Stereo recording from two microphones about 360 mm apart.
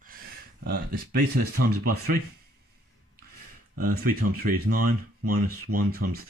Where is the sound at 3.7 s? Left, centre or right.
Right.